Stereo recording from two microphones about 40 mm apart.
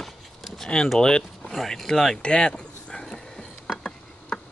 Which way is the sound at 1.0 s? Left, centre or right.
Centre.